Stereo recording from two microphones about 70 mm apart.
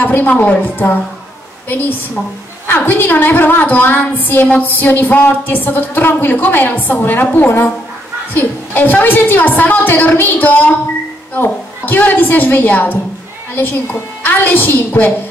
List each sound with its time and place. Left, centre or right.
0.0 s a woman's voice: left
14.2 s a woman's voice: left